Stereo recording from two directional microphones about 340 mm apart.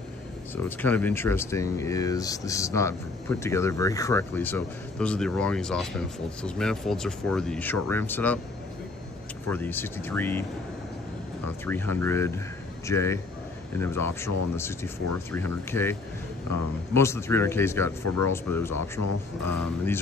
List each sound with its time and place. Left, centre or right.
0.7 s speech: centre
9.5 s speech: centre
11.6 s speech: centre
15.3 s speech: centre
18.0 s speech: left
18.3 s speech: centre
19.0 s speech: left